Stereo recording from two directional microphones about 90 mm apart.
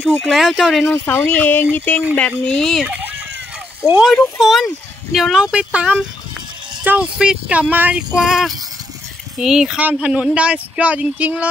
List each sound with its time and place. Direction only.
0.2 s speech: centre (ahead or behind)
0.8 s speech: 25° left (ahead or behind); by 2.9 s 5° left (ahead or behind)
3.8 s speech: 10° right (ahead or behind)
6.8 s music: 20° right (ahead or behind)
7.2 s speech: 10° right (ahead or behind)
8.1 s speech: 5° right (ahead or behind)